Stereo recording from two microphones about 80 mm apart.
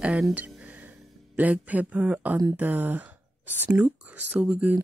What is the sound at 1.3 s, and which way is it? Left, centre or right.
Speech, centre.